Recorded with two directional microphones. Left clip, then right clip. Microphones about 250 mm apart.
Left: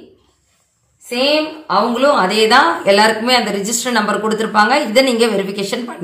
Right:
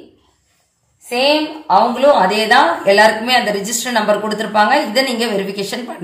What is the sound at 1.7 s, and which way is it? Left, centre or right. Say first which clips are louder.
A woman's voice: right 3 dB; centre.